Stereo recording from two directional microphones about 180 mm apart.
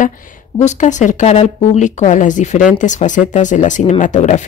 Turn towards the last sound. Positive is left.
turn(degrees=45)  # may be behind; listen again after turning